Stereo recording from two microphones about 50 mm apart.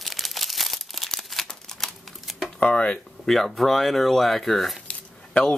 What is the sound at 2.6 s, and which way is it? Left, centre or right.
Speech, left.